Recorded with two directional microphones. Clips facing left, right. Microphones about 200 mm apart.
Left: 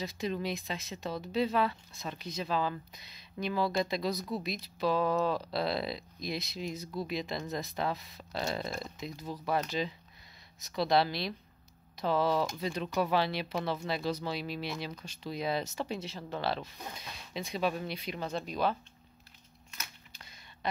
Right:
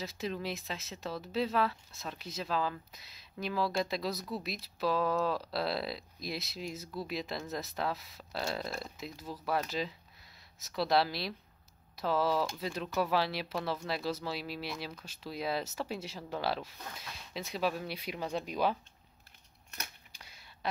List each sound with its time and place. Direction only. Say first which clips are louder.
0.0 s speech: left 3 dB; 5° right (ahead or behind)
16.7 s speech: left 2 dB; 20° left (ahead or behind)
17.3 s speech: left 1 dB; 5° right (ahead or behind)
20.1 s a sound: left 1 dB; 10° right (ahead or behind)